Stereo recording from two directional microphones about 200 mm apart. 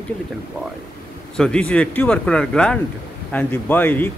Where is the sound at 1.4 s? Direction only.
5° left (ahead or behind).